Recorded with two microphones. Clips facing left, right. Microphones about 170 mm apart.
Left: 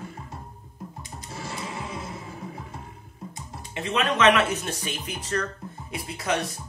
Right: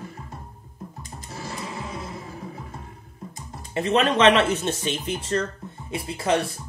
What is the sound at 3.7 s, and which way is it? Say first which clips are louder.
Speech: right 5 dB; 35° right (ahead or behind).